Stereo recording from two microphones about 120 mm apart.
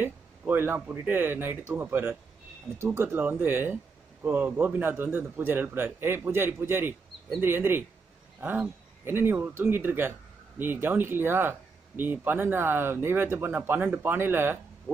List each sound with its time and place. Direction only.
0.0 s speech: 15° right (ahead or behind)
9.0 s speech: 20° right (ahead or behind)